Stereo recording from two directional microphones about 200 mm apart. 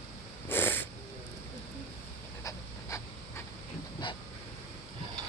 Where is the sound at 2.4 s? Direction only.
15° left (ahead or behind).